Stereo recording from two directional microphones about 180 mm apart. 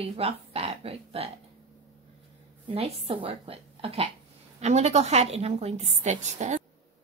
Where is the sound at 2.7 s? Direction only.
30° right (ahead or behind).